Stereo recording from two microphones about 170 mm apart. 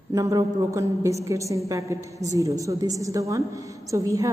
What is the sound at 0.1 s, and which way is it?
A woman's voice, 20° right (ahead or behind).